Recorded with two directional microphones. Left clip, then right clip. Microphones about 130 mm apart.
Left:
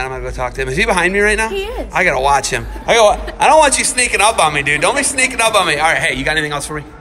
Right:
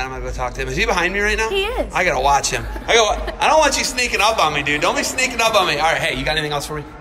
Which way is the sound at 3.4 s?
20° right (ahead or behind).